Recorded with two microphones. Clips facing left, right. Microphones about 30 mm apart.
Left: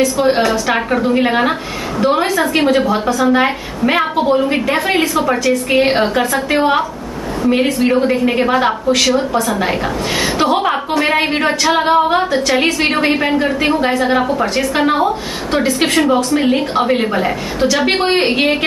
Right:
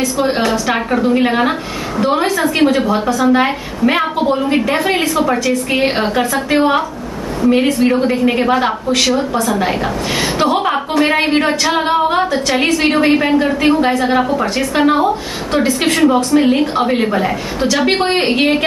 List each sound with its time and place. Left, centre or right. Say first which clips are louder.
0.0 s a woman's voice: left 2 dB; centre